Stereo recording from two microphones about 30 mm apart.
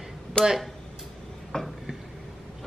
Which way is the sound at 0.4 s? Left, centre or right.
Left.